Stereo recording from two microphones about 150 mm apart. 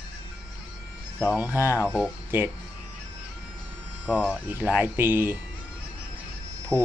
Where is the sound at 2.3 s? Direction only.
15° right (ahead or behind).